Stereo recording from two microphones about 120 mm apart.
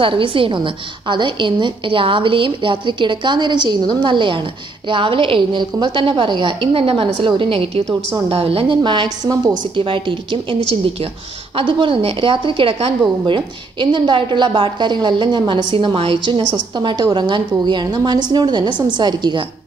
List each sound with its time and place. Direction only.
0.0 s a woman's voice: 45° right (ahead or behind)